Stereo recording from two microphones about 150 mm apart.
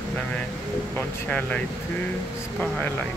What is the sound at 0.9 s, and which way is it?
Speech, 10° left (ahead or behind).